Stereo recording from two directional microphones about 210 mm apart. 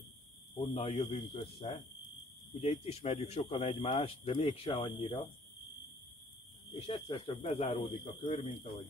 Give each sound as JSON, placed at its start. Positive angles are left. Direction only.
{"t": 0.6, "sound": "speech", "side_deg": 25}
{"t": 6.7, "sound": "speech", "side_deg": 25}